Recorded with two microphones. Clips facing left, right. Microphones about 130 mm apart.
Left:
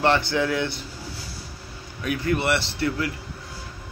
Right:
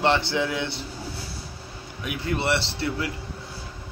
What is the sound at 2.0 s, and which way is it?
A man's voice, 20° right (ahead or behind).